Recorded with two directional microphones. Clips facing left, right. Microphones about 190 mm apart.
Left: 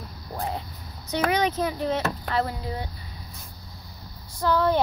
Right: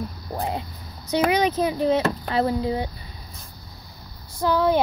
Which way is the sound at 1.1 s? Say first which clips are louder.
Right 4 dB; 15° right (ahead or behind).